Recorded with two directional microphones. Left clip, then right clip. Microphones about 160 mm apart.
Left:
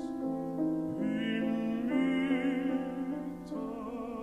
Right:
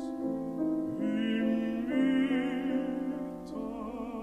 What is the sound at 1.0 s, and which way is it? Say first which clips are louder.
Music: right 2 dB; 40° right (ahead or behind).